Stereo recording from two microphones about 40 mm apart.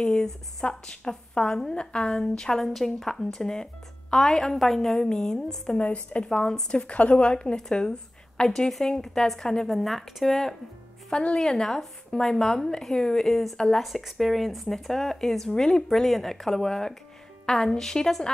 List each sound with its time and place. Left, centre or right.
0.0 s speech: centre
5.8 s a woman's voice: left
6.3 s speech: centre
9.7 s speech: centre
13.7 s speech: centre